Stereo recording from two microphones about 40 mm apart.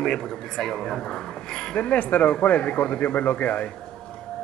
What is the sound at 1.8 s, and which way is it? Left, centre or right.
A man's voice, left.